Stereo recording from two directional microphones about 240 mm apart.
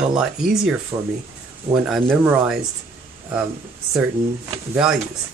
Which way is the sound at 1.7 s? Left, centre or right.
Centre.